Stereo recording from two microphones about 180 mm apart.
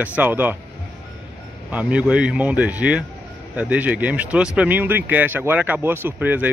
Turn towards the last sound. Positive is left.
turn(degrees=-10)  # may be behind; listen again after turning